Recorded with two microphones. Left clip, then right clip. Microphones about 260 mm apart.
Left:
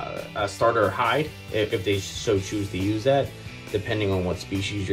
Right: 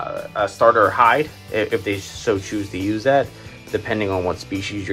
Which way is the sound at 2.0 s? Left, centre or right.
Centre.